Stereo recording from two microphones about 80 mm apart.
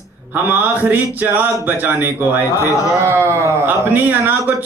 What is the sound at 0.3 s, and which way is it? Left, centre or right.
Speech, right.